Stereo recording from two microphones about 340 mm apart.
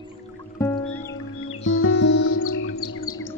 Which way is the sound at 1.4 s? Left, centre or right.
Left.